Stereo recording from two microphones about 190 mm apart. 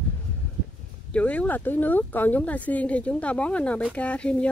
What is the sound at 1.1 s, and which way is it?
Speech, 5° left (ahead or behind).